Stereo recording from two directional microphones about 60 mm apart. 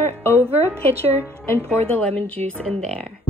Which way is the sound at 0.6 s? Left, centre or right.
Right.